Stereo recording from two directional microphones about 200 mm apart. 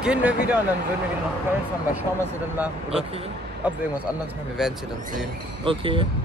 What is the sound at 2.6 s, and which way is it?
Speech, 5° right (ahead or behind).